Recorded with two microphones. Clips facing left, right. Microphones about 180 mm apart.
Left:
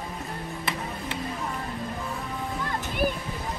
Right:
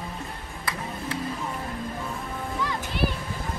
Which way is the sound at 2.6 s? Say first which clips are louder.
Left 3 dB; 50° left (ahead or behind).